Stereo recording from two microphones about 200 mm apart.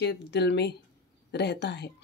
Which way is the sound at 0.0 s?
60° left (ahead or behind).